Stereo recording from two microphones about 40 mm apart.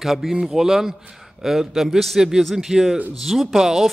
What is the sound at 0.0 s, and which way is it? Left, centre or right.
A man's voice, centre.